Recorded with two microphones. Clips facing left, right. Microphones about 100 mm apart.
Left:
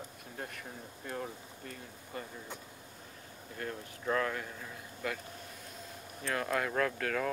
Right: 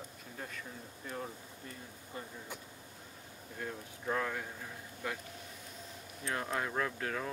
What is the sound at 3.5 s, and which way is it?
Speech, 65° left (ahead or behind).